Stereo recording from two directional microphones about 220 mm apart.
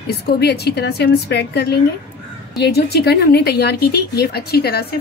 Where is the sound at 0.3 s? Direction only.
45° left (ahead or behind).